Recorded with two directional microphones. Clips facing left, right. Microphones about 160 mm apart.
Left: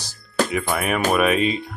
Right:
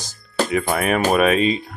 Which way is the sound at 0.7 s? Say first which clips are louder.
Right 2 dB; 30° right (ahead or behind).